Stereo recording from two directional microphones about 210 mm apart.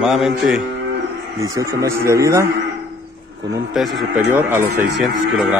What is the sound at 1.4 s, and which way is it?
A man's voice, 15° right (ahead or behind).